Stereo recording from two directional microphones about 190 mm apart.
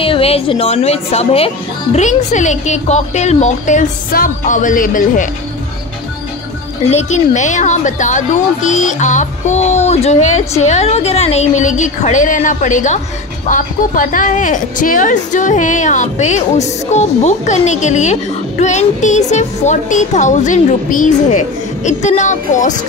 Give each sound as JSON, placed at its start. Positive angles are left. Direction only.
{"t": 0.0, "sound": "speech", "side_deg": 30}
{"t": 6.9, "sound": "speech", "side_deg": 35}